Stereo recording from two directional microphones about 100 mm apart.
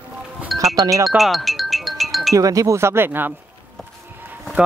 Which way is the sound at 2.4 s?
35° right (ahead or behind).